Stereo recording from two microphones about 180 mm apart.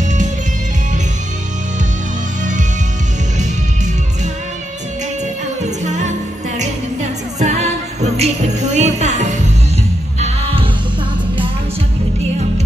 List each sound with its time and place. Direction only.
5.6 s music: 40° right (ahead or behind)